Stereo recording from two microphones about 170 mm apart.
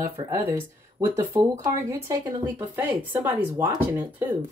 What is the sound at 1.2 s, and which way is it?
A woman's voice, 15° right (ahead or behind).